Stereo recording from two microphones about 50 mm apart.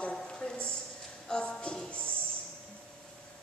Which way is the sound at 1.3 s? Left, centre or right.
Left.